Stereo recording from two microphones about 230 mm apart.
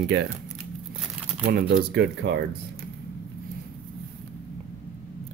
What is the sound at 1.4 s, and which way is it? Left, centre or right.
Speech, right.